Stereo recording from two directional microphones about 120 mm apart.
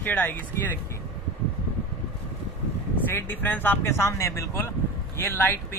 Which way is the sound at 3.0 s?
15° left (ahead or behind).